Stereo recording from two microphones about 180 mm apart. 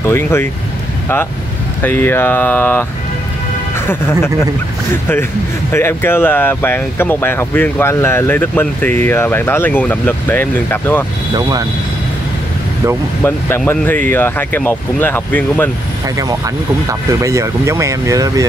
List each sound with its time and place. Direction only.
0.0 s speech: 15° left (ahead or behind)
1.8 s speech: 10° left (ahead or behind)
3.8 s speech: 10° left (ahead or behind)
5.7 s speech: 15° left (ahead or behind)
13.6 s speech: 10° left (ahead or behind)
16.2 s speech: 20° right (ahead or behind)